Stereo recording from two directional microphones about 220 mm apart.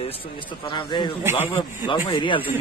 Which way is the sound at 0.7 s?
20° left (ahead or behind).